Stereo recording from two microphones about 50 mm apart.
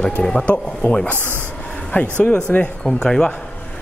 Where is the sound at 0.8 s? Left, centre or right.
Left.